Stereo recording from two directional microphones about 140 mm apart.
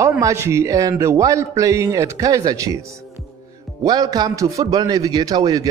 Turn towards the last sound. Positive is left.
turn(degrees=-25)  # may be behind; listen again after turning